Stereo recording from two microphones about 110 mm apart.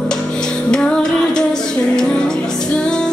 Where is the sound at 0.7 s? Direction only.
5° left (ahead or behind).